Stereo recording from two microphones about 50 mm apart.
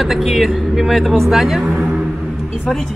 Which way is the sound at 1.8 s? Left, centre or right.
Centre.